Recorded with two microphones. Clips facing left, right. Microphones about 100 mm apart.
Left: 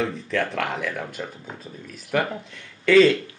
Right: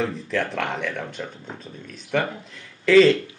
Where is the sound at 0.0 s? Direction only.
Centre (ahead or behind).